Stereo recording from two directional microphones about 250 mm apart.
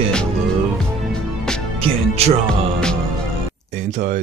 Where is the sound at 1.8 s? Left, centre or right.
Right.